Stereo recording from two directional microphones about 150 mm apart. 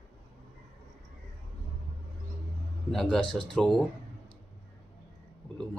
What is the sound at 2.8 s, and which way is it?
Speech, 5° left (ahead or behind).